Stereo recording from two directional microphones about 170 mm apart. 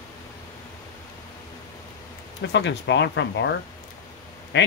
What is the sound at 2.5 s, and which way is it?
Speech, 90° left.